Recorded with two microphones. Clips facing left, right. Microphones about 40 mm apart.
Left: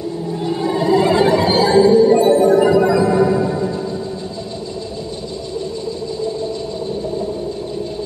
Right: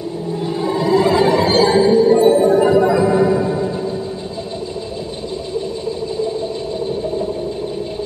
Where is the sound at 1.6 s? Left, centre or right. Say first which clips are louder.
Left 2 dB; centre.